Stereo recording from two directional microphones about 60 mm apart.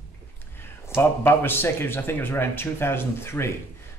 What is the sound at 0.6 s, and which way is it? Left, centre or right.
Speech, left.